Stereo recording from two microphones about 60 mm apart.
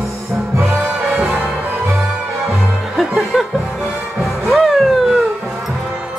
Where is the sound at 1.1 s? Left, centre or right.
Right.